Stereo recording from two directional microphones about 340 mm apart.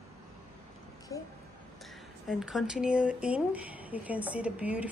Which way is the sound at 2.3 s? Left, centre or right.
Centre.